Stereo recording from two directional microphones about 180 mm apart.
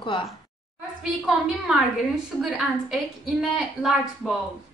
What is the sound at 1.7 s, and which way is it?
A woman's voice, 5° right (ahead or behind).